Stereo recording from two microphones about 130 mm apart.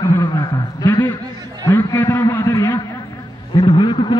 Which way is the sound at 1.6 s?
25° left (ahead or behind).